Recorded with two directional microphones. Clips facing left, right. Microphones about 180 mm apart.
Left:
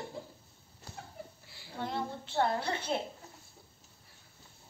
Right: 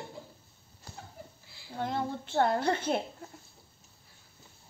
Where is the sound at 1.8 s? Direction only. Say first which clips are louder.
Right 4 dB; 50° right (ahead or behind).